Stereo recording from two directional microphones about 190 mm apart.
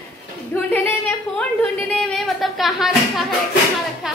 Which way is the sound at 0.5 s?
10° left (ahead or behind).